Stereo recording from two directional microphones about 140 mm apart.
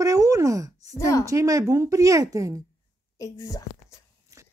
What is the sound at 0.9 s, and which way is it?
Speech, 20° left (ahead or behind).